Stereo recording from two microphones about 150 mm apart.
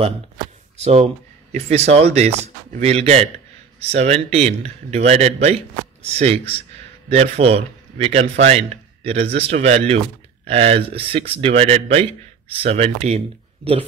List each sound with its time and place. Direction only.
0.8 s a man's voice: 45° right (ahead or behind)